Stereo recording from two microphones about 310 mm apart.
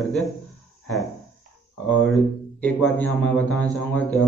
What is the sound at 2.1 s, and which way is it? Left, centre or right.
A man's voice, centre.